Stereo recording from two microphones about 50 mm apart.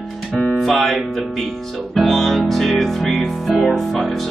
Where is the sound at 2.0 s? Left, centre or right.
Centre.